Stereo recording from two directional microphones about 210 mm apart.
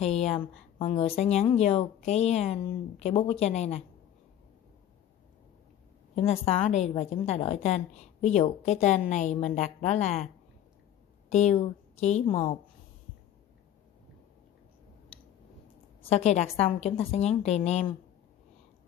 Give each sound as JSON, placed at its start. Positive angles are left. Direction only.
{"t": 0.0, "sound": "a woman's voice", "side_deg": 30}
{"t": 6.1, "sound": "a woman's voice", "side_deg": 30}
{"t": 16.1, "sound": "a woman's voice", "side_deg": 30}